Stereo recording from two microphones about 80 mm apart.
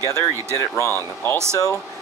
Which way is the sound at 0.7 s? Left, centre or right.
Left.